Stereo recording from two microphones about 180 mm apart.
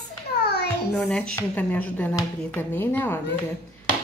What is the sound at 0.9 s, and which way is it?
Speech, 5° left (ahead or behind).